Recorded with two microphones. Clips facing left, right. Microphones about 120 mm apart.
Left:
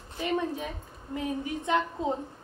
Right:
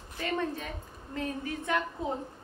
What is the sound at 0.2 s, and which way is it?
A woman's voice, 15° left (ahead or behind).